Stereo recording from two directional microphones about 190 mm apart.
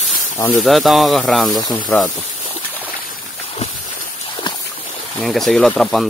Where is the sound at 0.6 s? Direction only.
Centre (ahead or behind).